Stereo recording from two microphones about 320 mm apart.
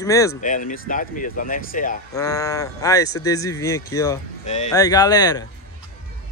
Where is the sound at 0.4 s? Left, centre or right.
Left.